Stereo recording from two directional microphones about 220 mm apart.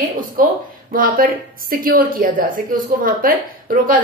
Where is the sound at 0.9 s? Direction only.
40° right (ahead or behind).